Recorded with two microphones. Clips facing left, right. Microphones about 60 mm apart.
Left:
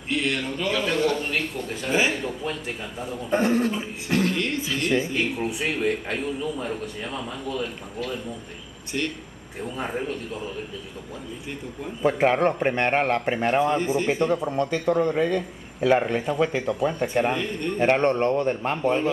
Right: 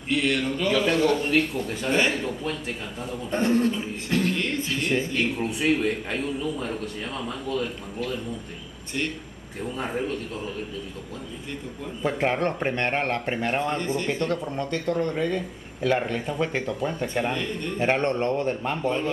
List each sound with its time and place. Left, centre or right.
0.1 s a man's voice: centre
9.6 s a man's voice: centre
12.0 s a man's voice: centre